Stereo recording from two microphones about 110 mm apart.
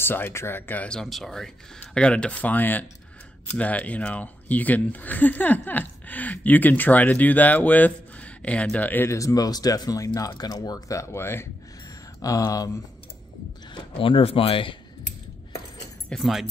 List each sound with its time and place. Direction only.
0.0 s speech: 20° left (ahead or behind)
12.2 s speech: 30° left (ahead or behind)
13.7 s speech: 50° left (ahead or behind)
16.1 s speech: centre (ahead or behind)